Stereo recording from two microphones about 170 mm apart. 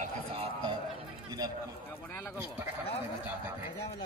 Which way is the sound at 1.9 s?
10° left (ahead or behind).